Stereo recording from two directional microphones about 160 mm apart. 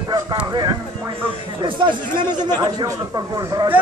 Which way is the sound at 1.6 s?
30° right (ahead or behind).